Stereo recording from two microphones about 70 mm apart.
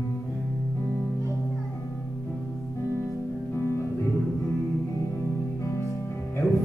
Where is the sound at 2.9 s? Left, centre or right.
Left.